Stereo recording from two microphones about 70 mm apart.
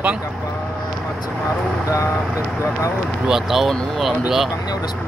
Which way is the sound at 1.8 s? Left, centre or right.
Left.